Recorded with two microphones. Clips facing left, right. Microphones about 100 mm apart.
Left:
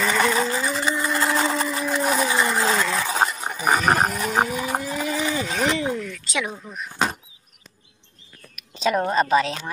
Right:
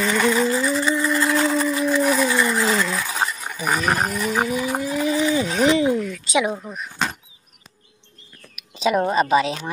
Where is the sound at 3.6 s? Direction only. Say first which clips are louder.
Left 2 dB; 20° left (ahead or behind).